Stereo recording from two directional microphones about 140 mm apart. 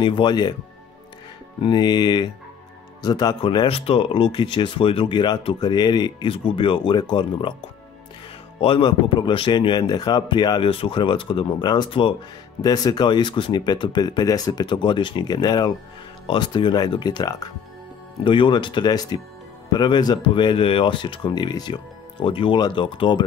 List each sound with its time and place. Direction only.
0.0 s speech: 35° left (ahead or behind)
1.6 s speech: 30° left (ahead or behind)
8.5 s speech: 40° left (ahead or behind)